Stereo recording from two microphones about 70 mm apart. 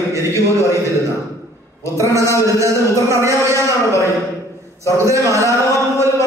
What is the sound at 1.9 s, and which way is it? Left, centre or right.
A man's voice, right.